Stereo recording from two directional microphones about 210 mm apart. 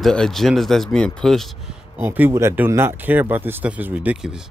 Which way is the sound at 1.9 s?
10° right (ahead or behind).